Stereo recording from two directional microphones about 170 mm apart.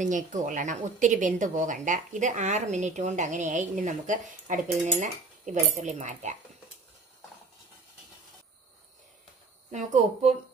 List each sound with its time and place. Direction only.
0.0 s a woman's voice: 45° right (ahead or behind)
9.7 s a woman's voice: 45° right (ahead or behind)